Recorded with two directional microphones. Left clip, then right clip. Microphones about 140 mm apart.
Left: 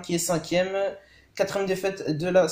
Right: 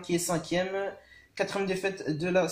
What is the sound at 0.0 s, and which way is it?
Speech, 10° left (ahead or behind).